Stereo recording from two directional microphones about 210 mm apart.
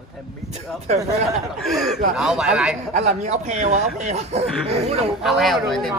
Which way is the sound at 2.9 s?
30° right (ahead or behind).